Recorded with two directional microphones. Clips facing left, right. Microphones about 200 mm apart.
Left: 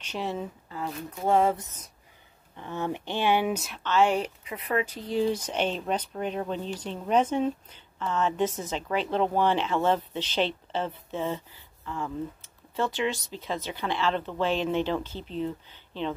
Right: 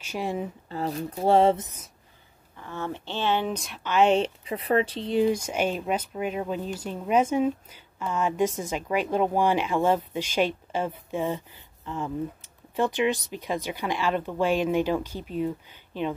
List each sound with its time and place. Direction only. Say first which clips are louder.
0.0 s speech: right 2 dB; 10° right (ahead or behind)
0.7 s speech: right 5 dB; 35° right (ahead or behind)
2.5 s speech: left 2 dB; 20° left (ahead or behind)
3.8 s speech: right 3 dB; 20° right (ahead or behind)